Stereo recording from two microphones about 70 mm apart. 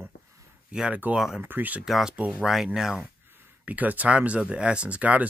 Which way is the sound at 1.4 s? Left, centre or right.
Right.